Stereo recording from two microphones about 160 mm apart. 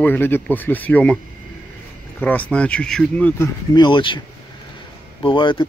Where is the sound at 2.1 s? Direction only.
10° left (ahead or behind).